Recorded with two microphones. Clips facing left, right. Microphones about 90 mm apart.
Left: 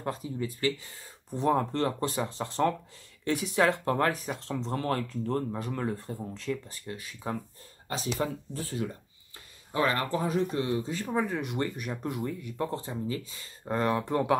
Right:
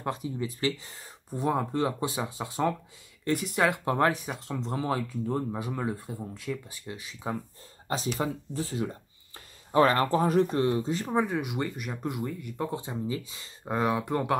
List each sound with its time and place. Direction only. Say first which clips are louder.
0.0 s speech: right 1 dB; 20° right (ahead or behind)
1.3 s speech: left 1 dB; 10° right (ahead or behind)
3.7 s speech: right 2 dB; 20° right (ahead or behind)
4.3 s speech: left 1 dB; 5° right (ahead or behind)
6.9 s speech: even; 20° right (ahead or behind)
8.2 s speech: right 1 dB; 20° right (ahead or behind)
9.7 s speech: right 5 dB; 40° right (ahead or behind); by 12.6 s centre (ahead or behind)
12.7 s speech: right 1 dB; 20° right (ahead or behind)
13.7 s speech: even; 10° right (ahead or behind)